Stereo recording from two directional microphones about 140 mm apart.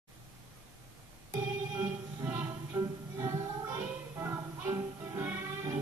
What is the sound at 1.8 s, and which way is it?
Music, 10° right (ahead or behind).